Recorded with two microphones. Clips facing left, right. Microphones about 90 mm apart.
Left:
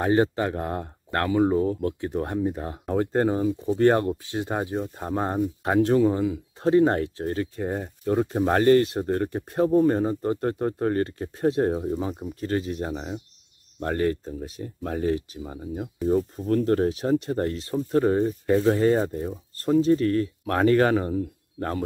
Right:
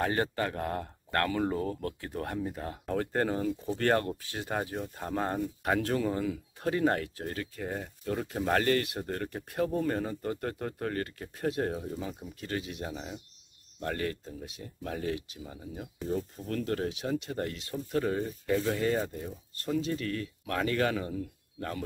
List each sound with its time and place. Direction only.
0.0 s speech: 20° left (ahead or behind); by 21.8 s 40° left (ahead or behind)